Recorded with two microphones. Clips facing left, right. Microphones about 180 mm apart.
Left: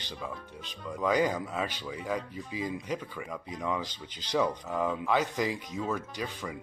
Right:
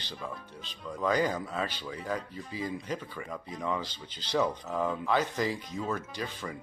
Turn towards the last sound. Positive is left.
turn(degrees=0)  # may be behind; listen again after turning